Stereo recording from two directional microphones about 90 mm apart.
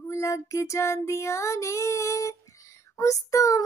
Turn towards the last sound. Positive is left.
turn(degrees=35)  # may be behind; listen again after turning